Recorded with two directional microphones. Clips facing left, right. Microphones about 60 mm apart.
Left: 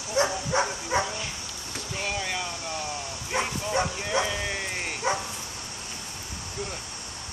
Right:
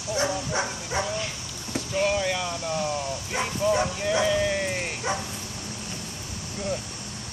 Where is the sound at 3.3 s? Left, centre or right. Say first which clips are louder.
Right 3 dB; centre.